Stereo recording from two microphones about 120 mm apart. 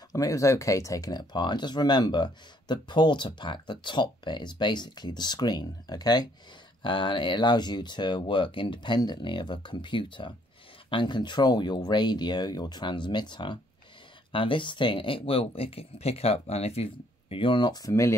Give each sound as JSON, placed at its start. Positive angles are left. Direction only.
{"t": 0.1, "sound": "speech", "side_deg": 25}